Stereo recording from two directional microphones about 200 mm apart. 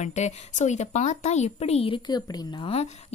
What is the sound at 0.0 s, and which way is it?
A woman's voice, 35° left (ahead or behind).